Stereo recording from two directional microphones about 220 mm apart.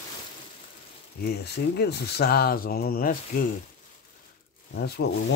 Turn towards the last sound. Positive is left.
turn(degrees=50)  # may be behind; listen again after turning